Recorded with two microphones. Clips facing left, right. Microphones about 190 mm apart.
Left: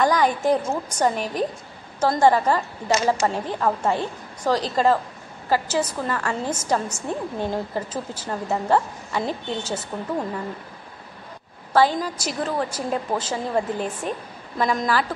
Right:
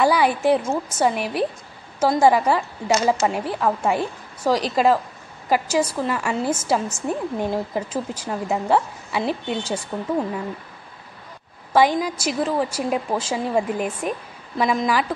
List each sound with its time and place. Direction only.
0.0 s a woman's voice: 10° right (ahead or behind)
11.7 s a woman's voice: 15° right (ahead or behind)